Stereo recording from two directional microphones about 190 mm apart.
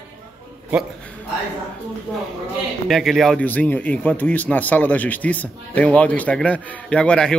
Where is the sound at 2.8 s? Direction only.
Centre (ahead or behind).